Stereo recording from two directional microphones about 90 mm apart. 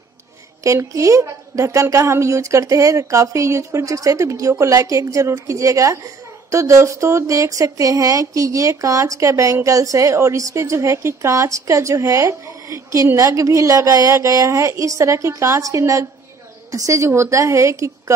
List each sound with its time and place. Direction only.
0.7 s a woman's voice: 35° right (ahead or behind)